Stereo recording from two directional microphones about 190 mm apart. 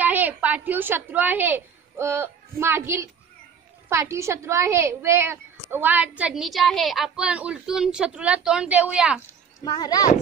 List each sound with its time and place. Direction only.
0.0 s a woman's voice: 10° right (ahead or behind)
9.7 s speech: 20° left (ahead or behind)